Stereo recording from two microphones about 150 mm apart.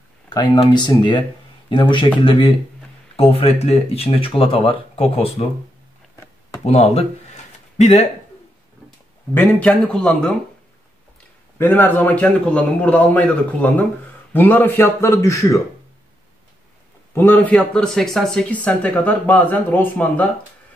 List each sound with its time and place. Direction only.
0.3 s speech: 30° left (ahead or behind)
6.6 s a sound: 45° left (ahead or behind)
9.3 s speech: 15° left (ahead or behind)
11.5 s speech: 15° left (ahead or behind)
17.1 s speech: 15° left (ahead or behind)
17.6 s speech: 5° left (ahead or behind)